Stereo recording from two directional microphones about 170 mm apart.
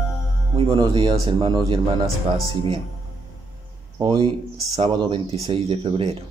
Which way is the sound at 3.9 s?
30° right (ahead or behind).